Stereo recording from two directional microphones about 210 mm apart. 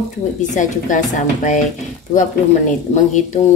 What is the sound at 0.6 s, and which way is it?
A woman's voice, 35° left (ahead or behind).